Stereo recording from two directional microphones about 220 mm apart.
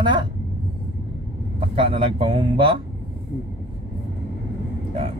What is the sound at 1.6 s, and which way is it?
Speech, 25° right (ahead or behind).